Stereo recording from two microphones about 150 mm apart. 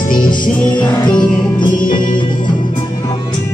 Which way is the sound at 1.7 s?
65° left (ahead or behind).